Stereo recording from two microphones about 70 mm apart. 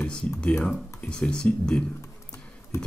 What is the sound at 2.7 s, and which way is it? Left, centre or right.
Horse, left.